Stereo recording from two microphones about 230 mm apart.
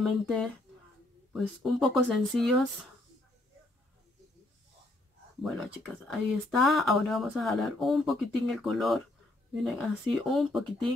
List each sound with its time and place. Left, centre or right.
0.0 s speech: centre
5.4 s speech: centre